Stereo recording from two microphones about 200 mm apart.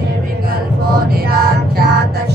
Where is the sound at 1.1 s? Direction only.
50° right (ahead or behind).